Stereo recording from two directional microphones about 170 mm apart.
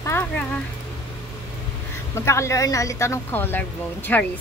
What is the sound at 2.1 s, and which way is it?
A woman's voice, 15° left (ahead or behind).